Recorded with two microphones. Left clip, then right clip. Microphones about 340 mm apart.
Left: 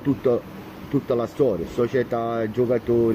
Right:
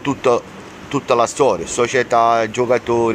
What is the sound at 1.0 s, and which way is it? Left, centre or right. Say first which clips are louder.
Speech: right 8 dB; right.